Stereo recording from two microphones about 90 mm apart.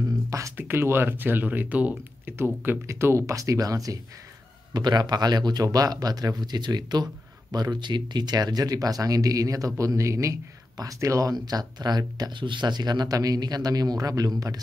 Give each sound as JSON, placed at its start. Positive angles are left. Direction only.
{"t": 0.3, "sound": "speech", "side_deg": -35}
{"t": 4.7, "sound": "speech", "side_deg": -55}